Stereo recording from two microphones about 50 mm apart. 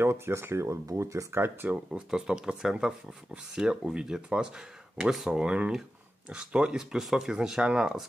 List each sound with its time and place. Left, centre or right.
0.0 s speech: right
1.9 s speech: centre
5.4 s speech: right